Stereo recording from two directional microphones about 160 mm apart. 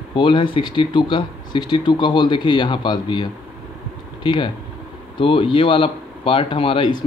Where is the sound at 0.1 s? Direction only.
30° left (ahead or behind).